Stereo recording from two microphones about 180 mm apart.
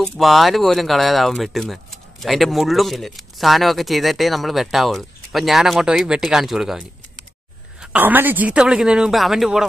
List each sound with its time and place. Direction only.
0.0 s speech: centre (ahead or behind)
7.8 s speech: 10° right (ahead or behind)